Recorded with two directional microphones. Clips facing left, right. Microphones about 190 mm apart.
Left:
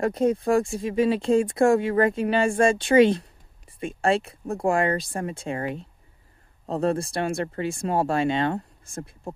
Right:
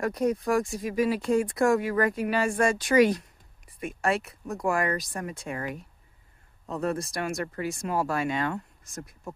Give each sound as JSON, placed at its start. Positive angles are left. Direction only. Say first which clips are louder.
{"t": 0.0, "sound": "speech", "louder": "left 4 dB", "side_deg": 25}